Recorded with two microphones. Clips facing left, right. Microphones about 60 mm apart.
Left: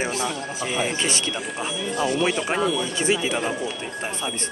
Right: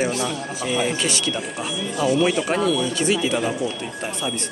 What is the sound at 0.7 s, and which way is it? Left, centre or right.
Speech, left.